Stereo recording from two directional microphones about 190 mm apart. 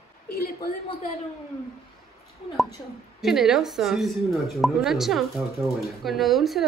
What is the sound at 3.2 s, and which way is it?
Speech, centre (ahead or behind).